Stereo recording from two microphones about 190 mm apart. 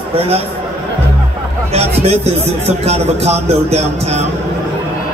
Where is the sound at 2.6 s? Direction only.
35° right (ahead or behind).